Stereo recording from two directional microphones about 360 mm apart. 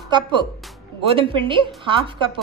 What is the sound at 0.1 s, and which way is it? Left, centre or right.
A woman's voice, centre.